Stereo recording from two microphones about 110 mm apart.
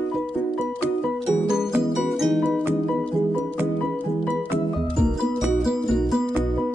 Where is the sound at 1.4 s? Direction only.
5° right (ahead or behind).